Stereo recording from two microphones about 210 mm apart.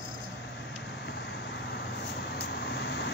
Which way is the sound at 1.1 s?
55° left (ahead or behind).